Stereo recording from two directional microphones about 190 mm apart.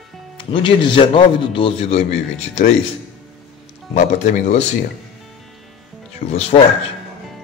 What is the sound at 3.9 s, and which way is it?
Speech, 40° left (ahead or behind).